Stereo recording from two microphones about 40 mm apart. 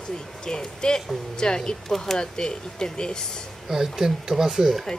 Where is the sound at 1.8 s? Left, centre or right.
Centre.